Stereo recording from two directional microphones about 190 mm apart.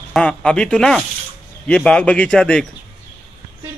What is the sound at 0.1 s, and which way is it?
A man's voice, 5° left (ahead or behind).